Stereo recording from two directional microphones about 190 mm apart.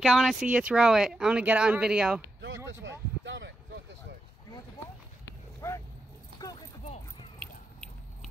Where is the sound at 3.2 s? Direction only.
75° right (ahead or behind).